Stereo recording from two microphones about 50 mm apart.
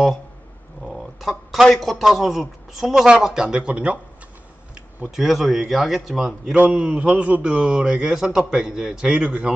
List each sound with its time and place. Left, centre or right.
0.8 s a man's voice: centre; by 4.0 s right
5.1 s speech: centre
6.7 s a man's voice: right